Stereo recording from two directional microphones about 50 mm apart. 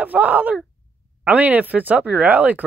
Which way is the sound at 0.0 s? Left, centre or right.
Right.